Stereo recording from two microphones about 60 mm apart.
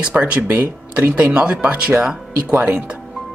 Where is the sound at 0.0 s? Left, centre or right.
Right.